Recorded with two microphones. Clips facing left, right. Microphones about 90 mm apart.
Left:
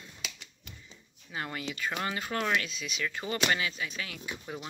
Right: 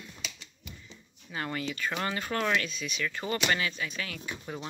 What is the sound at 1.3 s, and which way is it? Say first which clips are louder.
Speech: right 2 dB; 10° left (ahead or behind).